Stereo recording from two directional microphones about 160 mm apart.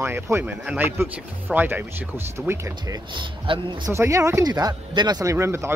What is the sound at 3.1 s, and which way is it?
Speech, 30° right (ahead or behind).